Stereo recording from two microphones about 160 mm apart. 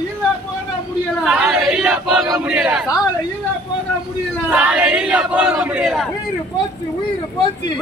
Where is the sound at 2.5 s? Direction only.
5° right (ahead or behind).